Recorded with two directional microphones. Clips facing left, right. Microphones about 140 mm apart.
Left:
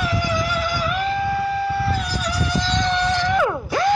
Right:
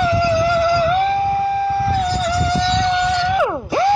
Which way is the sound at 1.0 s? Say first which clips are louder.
Right 5 dB; 40° right (ahead or behind).